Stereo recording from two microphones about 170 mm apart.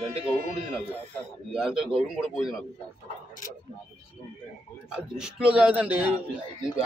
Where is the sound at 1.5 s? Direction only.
5° right (ahead or behind).